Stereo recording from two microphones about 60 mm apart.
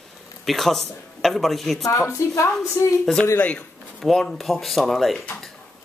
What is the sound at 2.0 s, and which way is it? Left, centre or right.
Speech, left.